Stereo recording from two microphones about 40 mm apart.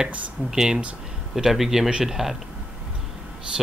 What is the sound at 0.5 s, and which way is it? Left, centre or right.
Speech, centre.